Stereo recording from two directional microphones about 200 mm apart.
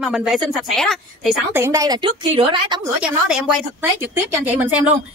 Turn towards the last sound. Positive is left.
turn(degrees=-10)  # may be behind; listen again after turning